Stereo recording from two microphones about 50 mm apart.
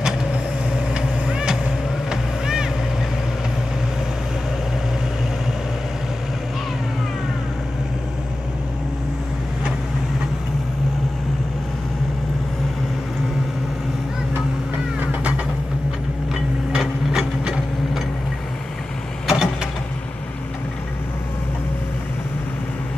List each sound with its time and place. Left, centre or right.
0.9 s vehicle: centre
2.0 s boat: centre
16.7 s a sound: centre
19.2 s vehicle: centre